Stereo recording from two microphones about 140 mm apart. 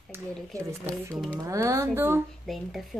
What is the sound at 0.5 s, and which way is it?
Speech, 25° right (ahead or behind).